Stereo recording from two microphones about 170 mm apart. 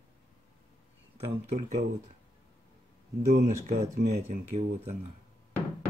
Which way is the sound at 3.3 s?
45° right (ahead or behind).